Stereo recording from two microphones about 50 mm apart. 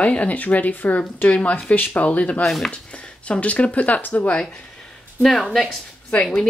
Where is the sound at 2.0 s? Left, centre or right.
Left.